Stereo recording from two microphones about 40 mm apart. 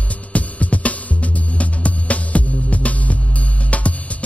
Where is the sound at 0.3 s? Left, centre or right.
Left.